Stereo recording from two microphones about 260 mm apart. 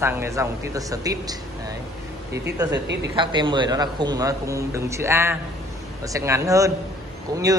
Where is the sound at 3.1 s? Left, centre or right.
Centre.